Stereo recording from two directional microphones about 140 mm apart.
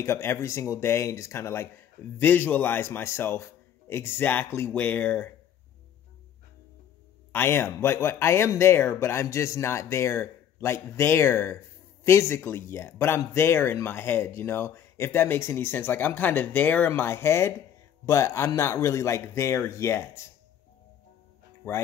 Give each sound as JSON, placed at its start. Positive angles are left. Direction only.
{"t": 0.0, "sound": "speech", "side_deg": 20}
{"t": 7.3, "sound": "speech", "side_deg": 15}
{"t": 21.6, "sound": "speech", "side_deg": 15}